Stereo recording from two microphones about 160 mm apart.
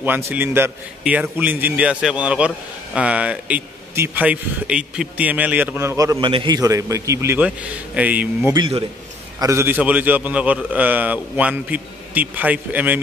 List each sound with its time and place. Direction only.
0.0 s a man's voice: 10° right (ahead or behind)
6.2 s a man's voice: 30° right (ahead or behind); by 8.5 s 10° right (ahead or behind)
8.5 s a man's voice: 30° right (ahead or behind)
9.4 s a man's voice: 15° right (ahead or behind)